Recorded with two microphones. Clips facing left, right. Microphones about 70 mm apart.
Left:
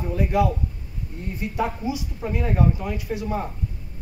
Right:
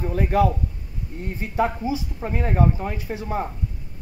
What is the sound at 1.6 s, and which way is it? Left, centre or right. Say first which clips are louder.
Speech: right 4 dB; right.